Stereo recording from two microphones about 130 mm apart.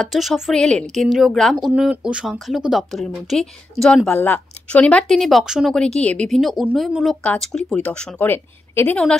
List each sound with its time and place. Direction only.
0.0 s a woman's voice: centre (ahead or behind)